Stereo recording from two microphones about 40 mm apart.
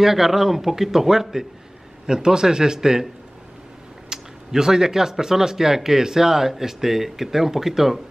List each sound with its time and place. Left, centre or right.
0.0 s speech: centre
4.1 s speech: centre